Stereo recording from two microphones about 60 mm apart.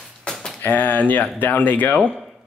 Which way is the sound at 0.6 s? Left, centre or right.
Left.